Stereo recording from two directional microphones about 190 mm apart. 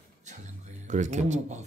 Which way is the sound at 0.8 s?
40° right (ahead or behind).